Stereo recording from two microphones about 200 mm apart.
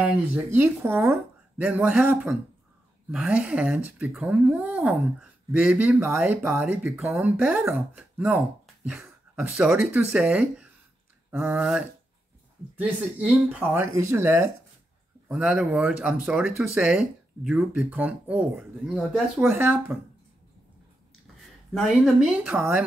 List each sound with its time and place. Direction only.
0.0 s speech: 10° right (ahead or behind)
21.7 s speech: centre (ahead or behind)